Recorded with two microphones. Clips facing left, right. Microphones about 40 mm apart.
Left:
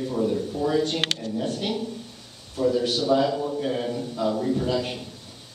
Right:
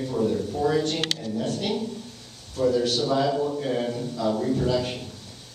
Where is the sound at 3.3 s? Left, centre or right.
Centre.